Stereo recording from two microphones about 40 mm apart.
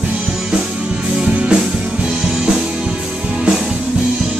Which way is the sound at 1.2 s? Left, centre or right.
Right.